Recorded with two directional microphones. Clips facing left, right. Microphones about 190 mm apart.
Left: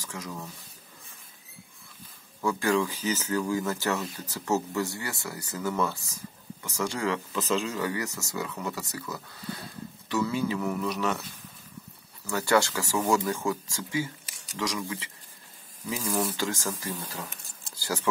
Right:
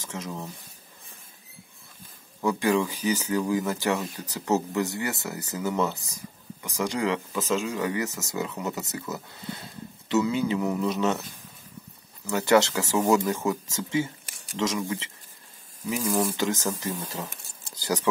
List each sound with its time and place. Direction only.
0.0 s speech: 25° right (ahead or behind)
2.4 s speech: 15° right (ahead or behind)
12.3 s speech: 20° right (ahead or behind)
15.9 s speech: 10° right (ahead or behind)